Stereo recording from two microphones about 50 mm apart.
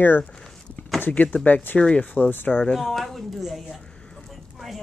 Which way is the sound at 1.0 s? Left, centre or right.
Left.